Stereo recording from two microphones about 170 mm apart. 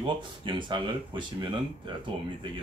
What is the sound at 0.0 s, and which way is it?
Speech, 30° right (ahead or behind).